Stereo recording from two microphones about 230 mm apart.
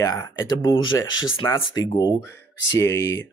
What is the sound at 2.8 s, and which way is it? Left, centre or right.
Speech, centre.